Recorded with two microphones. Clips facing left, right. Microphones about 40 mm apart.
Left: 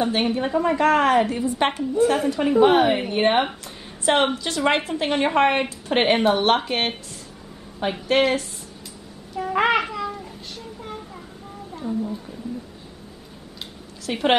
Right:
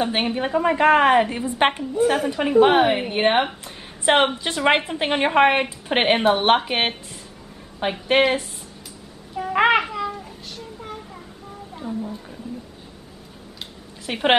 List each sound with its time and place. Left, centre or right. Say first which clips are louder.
0.0 s a woman's voice: left 1 dB; right
1.8 s a woman's voice: even; centre
3.6 s a sound: right 2 dB; right
4.6 s a woman's voice: right 2 dB; right
8.2 s a woman's voice: right 1 dB; centre
9.4 s babbling: right 2 dB; centre
9.8 s a sound: right 1 dB; centre
14.0 s a woman's voice: right 1 dB; right